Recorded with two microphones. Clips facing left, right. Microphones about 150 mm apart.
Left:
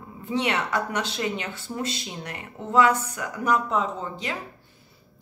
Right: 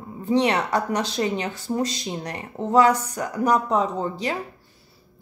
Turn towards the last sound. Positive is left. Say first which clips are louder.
# right 5 dB
turn(degrees=-35)  # may be behind; listen again after turning